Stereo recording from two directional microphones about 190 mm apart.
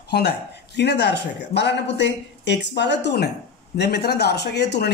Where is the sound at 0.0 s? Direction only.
60° left (ahead or behind).